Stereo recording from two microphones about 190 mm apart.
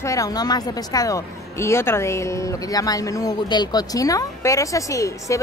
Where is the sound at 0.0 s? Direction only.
15° left (ahead or behind).